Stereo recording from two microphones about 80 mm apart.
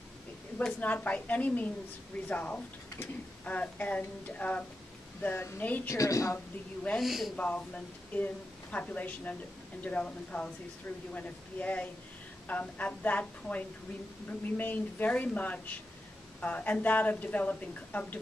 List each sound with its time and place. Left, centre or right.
0.7 s speech: centre
5.9 s a woman's voice: left
7.0 s speech: centre
7.3 s speech: centre